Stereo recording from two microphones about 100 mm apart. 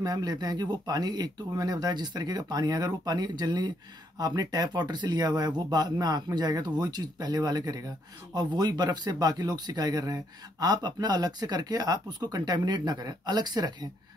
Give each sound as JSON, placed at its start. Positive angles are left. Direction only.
{"t": 0.0, "sound": "speech", "side_deg": -40}